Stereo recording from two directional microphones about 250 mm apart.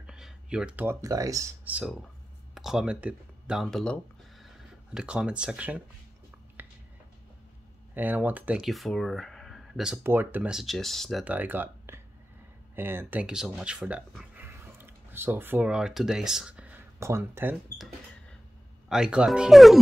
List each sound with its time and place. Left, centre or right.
0.0 s speech: centre
7.9 s speech: centre
18.9 s speech: centre